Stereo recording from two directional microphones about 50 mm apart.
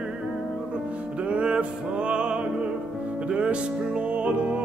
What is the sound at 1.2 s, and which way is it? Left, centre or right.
Music, right.